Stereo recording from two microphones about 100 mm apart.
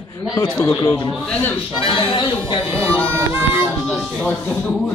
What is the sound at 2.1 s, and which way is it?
Speech, 55° left (ahead or behind).